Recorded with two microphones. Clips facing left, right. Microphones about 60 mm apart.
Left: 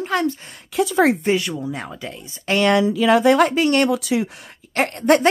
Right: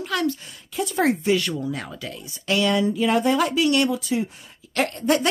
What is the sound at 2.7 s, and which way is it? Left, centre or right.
Speech, left.